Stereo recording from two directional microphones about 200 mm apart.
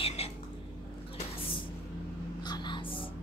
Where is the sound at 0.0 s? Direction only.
30° left (ahead or behind).